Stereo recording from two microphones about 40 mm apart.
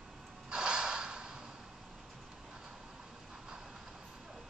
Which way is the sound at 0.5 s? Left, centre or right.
Centre.